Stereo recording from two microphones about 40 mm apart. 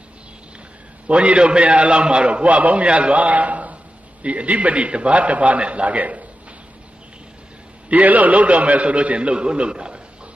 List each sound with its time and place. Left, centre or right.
1.0 s a man's voice: right
7.9 s a man's voice: right